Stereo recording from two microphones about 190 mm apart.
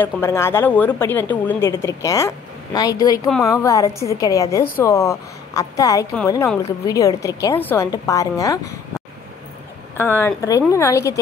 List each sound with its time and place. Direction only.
0.0 s a woman's voice: 10° left (ahead or behind)
9.9 s a woman's voice: 10° left (ahead or behind)